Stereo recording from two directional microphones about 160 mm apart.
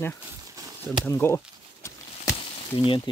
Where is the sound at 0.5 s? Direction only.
20° right (ahead or behind).